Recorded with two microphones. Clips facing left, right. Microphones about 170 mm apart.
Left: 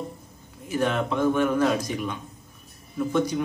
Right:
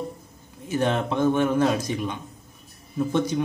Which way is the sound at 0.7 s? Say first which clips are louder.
Right 1 dB; 25° right (ahead or behind).